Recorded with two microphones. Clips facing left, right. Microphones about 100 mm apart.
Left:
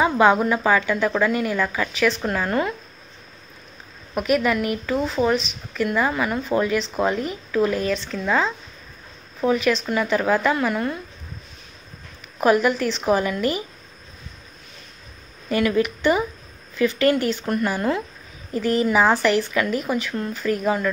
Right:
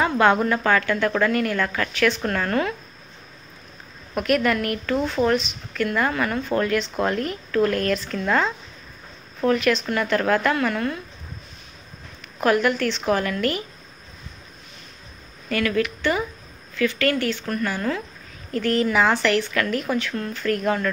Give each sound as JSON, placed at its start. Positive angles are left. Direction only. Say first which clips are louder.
{"t": 0.0, "sound": "a woman's voice", "louder": "left 2 dB", "side_deg": 10}
{"t": 4.1, "sound": "a woman's voice", "louder": "even", "side_deg": 5}
{"t": 12.4, "sound": "a woman's voice", "louder": "left 2 dB", "side_deg": 5}
{"t": 15.5, "sound": "a woman's voice", "louder": "left 2 dB", "side_deg": 20}